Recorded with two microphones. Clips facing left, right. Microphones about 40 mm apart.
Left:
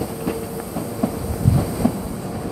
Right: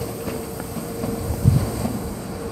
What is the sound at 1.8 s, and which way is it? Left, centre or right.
Train, centre.